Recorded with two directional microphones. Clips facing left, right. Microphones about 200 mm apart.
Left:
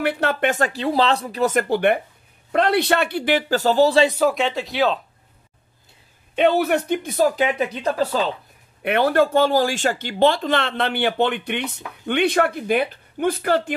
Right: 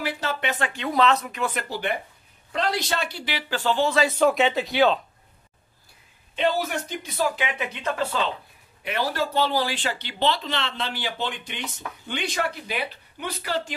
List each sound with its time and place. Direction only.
0.0 s speech: 60° left (ahead or behind); by 4.0 s 40° left (ahead or behind)
4.2 s speech: centre (ahead or behind)
6.3 s speech: 60° left (ahead or behind); by 8.3 s 35° left (ahead or behind)
8.8 s speech: 60° left (ahead or behind)